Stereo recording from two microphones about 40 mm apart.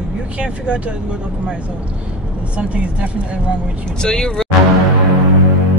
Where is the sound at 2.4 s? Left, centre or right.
Right.